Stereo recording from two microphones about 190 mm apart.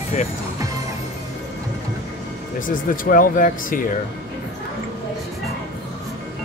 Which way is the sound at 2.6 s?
45° left (ahead or behind).